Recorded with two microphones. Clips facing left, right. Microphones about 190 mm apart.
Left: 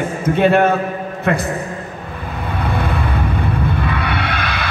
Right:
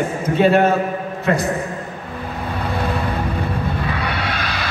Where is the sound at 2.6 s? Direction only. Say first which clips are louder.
Left 1 dB; 55° left (ahead or behind).